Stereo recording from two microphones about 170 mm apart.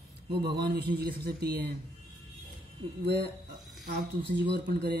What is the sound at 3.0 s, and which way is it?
Speech, 75° right (ahead or behind).